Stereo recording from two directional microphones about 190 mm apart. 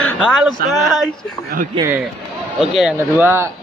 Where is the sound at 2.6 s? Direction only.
5° right (ahead or behind).